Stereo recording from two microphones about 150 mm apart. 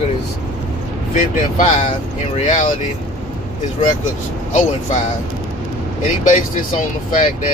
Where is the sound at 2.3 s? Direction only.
50° left (ahead or behind).